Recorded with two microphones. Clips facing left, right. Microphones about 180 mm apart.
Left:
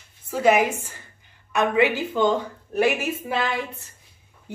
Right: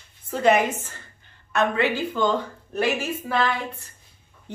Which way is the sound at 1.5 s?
15° left (ahead or behind).